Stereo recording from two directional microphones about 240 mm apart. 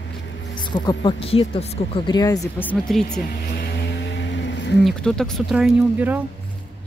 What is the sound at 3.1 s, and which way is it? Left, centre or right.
Vehicle, left.